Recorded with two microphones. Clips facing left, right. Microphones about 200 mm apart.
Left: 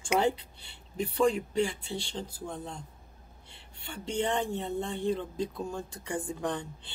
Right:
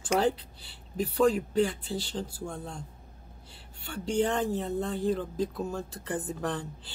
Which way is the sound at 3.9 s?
5° right (ahead or behind).